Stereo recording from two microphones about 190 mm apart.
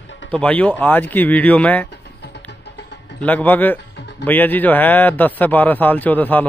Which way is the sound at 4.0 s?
65° left (ahead or behind).